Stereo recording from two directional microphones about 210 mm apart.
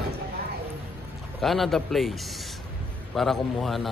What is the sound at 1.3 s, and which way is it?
Speech, centre (ahead or behind).